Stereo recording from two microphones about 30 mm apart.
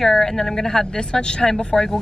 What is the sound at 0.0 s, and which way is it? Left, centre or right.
Speech, centre.